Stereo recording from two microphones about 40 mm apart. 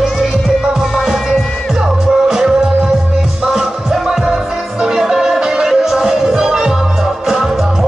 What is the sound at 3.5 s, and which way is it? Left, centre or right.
Music, centre.